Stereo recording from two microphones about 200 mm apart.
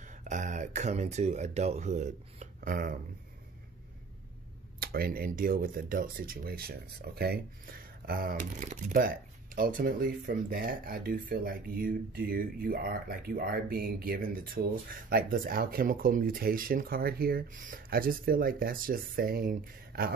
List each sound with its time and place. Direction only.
0.0 s speech: 40° right (ahead or behind)
4.7 s speech: 50° right (ahead or behind)